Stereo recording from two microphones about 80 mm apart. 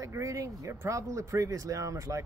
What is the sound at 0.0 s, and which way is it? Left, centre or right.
Speech, right.